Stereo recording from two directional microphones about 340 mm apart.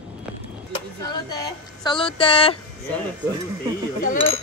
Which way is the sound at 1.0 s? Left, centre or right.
Centre.